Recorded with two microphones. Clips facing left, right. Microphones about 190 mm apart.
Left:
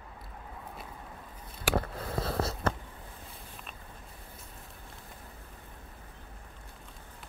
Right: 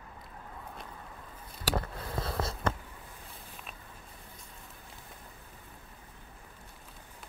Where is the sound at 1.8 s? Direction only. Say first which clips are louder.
Left 3 dB; 30° left (ahead or behind).